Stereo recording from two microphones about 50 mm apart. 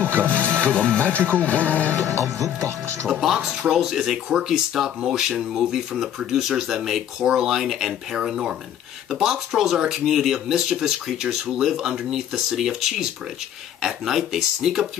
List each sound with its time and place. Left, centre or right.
0.5 s speech: left
2.0 s speech: right
3.1 s speech: centre